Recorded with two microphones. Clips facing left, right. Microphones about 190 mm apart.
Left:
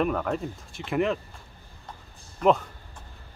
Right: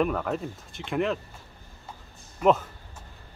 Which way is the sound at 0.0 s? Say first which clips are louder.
Even; centre (ahead or behind).